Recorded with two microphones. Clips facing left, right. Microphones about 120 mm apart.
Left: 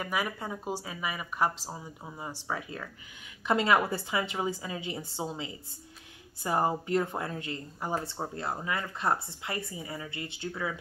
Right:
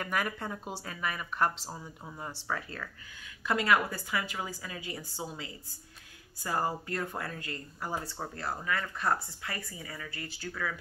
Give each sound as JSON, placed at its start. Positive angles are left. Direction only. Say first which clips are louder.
{"t": 0.0, "sound": "speech", "louder": "left 1 dB", "side_deg": 10}